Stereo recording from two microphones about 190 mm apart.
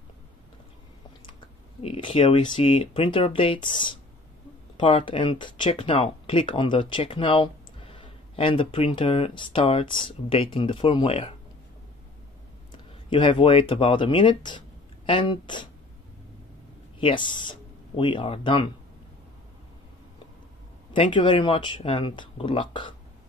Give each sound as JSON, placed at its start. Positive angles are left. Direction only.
{"t": 1.8, "sound": "speech", "side_deg": 30}
{"t": 13.1, "sound": "speech", "side_deg": 25}
{"t": 17.0, "sound": "speech", "side_deg": 25}
{"t": 20.9, "sound": "speech", "side_deg": 25}